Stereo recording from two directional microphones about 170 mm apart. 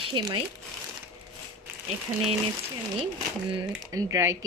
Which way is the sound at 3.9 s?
20° right (ahead or behind).